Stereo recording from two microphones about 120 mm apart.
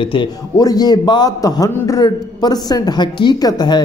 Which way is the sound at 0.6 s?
35° left (ahead or behind).